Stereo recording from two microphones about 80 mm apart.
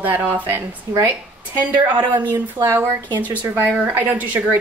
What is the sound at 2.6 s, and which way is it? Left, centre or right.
Speech, right.